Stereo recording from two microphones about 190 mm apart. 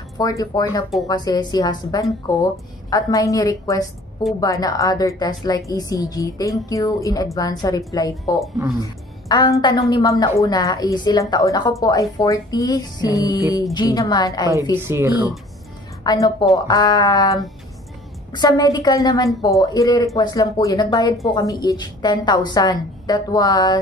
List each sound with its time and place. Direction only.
0.2 s a woman's voice: 20° left (ahead or behind)
14.8 s speech: 10° right (ahead or behind)
16.0 s a woman's voice: 20° left (ahead or behind)